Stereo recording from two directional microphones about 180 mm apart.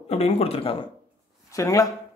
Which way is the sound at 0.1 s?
35° left (ahead or behind).